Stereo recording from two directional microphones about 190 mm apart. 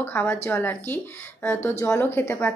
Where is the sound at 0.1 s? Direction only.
10° left (ahead or behind).